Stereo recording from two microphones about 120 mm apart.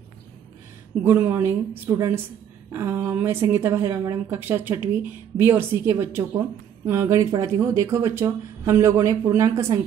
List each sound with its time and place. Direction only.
1.0 s speech: 20° right (ahead or behind)